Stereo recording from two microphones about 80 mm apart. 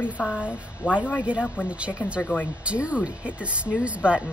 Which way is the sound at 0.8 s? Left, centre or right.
Centre.